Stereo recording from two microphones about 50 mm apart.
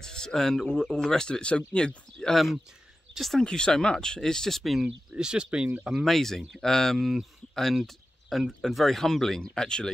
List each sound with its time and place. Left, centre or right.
0.0 s speech: centre
2.3 s speech: centre
3.4 s speech: centre
4.8 s speech: centre
6.0 s speech: centre